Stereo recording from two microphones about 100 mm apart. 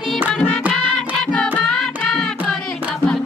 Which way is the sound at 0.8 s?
5° left (ahead or behind).